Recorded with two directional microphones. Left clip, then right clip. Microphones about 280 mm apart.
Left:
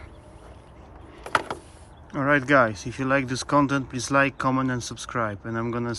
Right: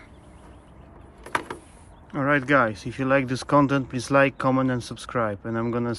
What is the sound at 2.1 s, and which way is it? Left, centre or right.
Speech, centre.